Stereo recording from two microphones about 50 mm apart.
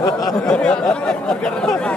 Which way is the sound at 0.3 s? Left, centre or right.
Centre.